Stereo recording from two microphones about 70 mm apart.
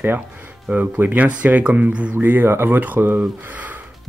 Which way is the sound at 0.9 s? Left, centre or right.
Right.